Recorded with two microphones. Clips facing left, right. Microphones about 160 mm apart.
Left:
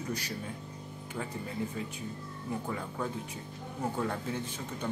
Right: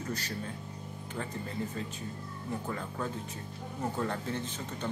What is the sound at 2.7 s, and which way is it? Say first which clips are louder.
Speech: left 1 dB; 10° left (ahead or behind).